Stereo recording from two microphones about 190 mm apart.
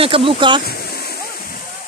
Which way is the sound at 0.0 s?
30° right (ahead or behind).